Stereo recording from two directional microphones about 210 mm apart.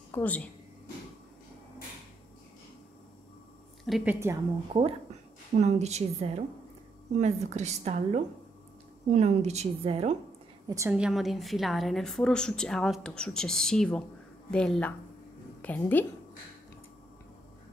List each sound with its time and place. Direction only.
0.1 s speech: 5° left (ahead or behind)
3.8 s a woman's voice: 5° right (ahead or behind)
5.5 s a woman's voice: 35° right (ahead or behind)
10.7 s a woman's voice: 10° right (ahead or behind); by 16.1 s 10° left (ahead or behind)